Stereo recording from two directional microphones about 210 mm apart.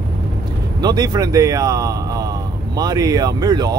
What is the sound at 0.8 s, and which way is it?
Speech, 20° right (ahead or behind).